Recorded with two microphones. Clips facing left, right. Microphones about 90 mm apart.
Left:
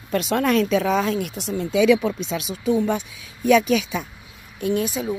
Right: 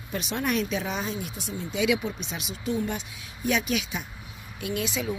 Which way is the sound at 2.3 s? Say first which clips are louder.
Left 9 dB; 90° left.